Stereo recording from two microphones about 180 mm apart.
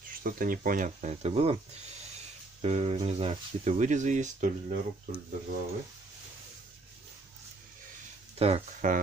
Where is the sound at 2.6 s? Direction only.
35° right (ahead or behind).